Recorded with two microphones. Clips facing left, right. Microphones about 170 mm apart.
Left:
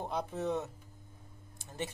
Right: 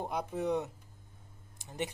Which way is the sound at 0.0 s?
10° right (ahead or behind).